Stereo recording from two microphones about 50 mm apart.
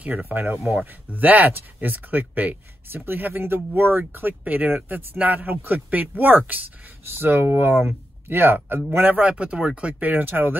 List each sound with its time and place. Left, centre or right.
0.0 s speech: right
0.7 s speech: right
7.1 s speech: right
9.2 s speech: right